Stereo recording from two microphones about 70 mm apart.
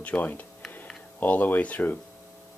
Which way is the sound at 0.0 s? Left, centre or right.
Left.